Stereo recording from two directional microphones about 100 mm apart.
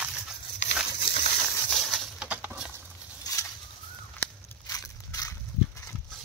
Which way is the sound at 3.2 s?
35° left (ahead or behind).